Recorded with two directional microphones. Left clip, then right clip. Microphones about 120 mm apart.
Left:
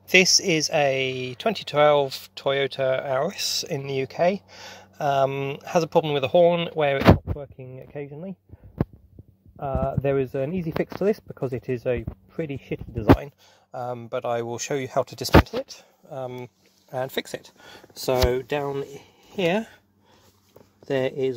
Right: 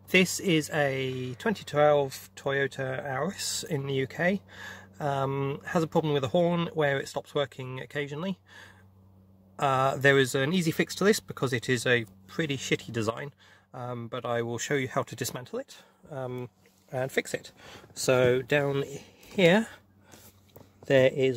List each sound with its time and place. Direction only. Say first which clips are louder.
0.1 s speech: left 7 dB; 15° left (ahead or behind); by 8.3 s centre (ahead or behind)
9.6 s speech: right 2 dB; 5° left (ahead or behind)
10.6 s speech: left 2 dB; 20° left (ahead or behind); by 13.0 s 5° left (ahead or behind)
13.2 s speech: left 2 dB; 20° left (ahead or behind)
16.1 s speech: left 3 dB; 5° right (ahead or behind)
18.5 s speech: even; 35° right (ahead or behind)
20.8 s speech: right 2 dB; 15° right (ahead or behind)